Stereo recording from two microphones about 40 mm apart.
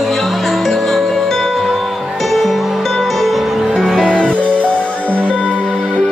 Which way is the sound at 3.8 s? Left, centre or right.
Centre.